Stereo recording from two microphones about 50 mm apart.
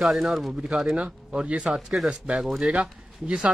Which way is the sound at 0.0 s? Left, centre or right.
Centre.